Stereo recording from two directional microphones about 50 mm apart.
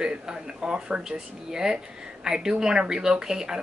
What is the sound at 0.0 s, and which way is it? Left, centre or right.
Speech, centre.